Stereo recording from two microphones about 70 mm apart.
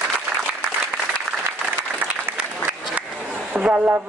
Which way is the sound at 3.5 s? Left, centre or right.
Right.